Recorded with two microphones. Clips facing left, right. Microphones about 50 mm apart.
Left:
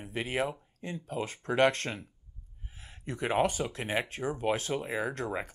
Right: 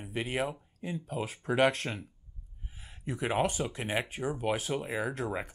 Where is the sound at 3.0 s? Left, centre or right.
Centre.